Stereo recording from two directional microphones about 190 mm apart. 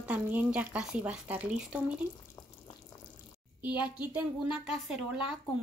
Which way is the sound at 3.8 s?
5° right (ahead or behind).